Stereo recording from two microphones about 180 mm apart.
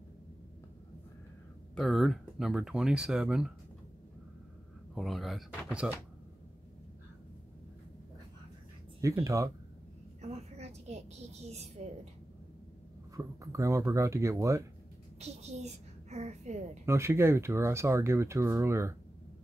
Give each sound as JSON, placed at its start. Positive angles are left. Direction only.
{"t": 1.8, "sound": "speech", "side_deg": 0}
{"t": 4.9, "sound": "speech", "side_deg": 0}
{"t": 9.0, "sound": "speech", "side_deg": -15}
{"t": 10.2, "sound": "a woman's voice", "side_deg": -35}
{"t": 13.1, "sound": "speech", "side_deg": -15}
{"t": 15.1, "sound": "a woman's voice", "side_deg": -35}
{"t": 16.8, "sound": "speech", "side_deg": -15}